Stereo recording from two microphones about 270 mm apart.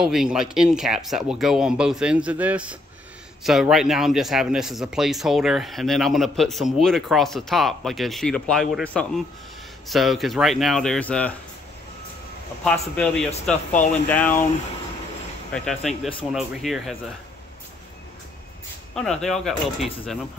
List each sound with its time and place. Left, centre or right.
0.0 s speech: centre
12.6 s speech: centre
15.5 s speech: centre
18.9 s speech: centre